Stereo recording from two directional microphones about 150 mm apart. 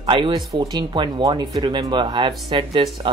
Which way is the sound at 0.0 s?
35° right (ahead or behind).